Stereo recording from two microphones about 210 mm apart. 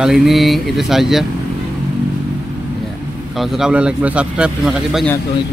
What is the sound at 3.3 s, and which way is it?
Speech, centre (ahead or behind).